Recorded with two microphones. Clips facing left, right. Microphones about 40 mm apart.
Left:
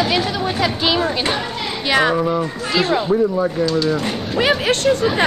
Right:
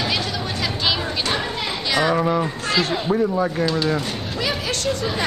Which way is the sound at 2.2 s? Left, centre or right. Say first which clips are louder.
Left 1 dB; centre.